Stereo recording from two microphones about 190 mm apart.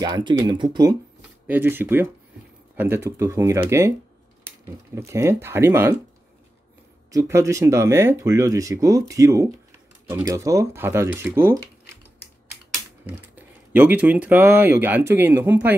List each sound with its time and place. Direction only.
0.0 s speech: 20° right (ahead or behind)
1.5 s speech: 10° right (ahead or behind)
7.1 s speech: 15° right (ahead or behind)
13.4 s speech: 10° right (ahead or behind)